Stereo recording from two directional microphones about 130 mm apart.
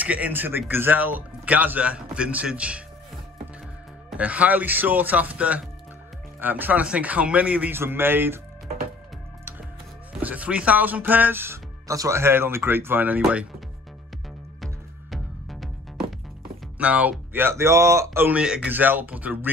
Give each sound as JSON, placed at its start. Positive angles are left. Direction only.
{"t": 0.0, "sound": "speech", "side_deg": -10}
{"t": 4.1, "sound": "speech", "side_deg": -10}
{"t": 10.2, "sound": "speech", "side_deg": -10}
{"t": 14.6, "sound": "music", "side_deg": 0}
{"t": 16.7, "sound": "speech", "side_deg": -10}